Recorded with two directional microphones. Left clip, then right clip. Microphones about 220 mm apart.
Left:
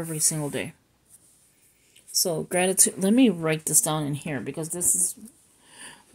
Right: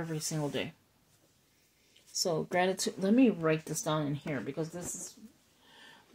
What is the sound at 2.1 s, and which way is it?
Speech, 35° left (ahead or behind).